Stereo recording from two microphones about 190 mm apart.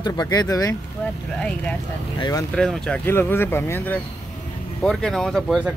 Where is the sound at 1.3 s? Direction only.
5° left (ahead or behind).